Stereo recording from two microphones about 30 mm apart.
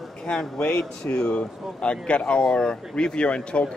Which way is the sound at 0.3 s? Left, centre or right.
Left.